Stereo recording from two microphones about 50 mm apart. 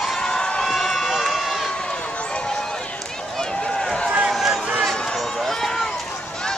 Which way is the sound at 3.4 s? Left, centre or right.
Centre.